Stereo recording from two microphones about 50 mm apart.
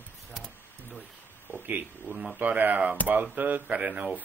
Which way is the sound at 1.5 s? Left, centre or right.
Right.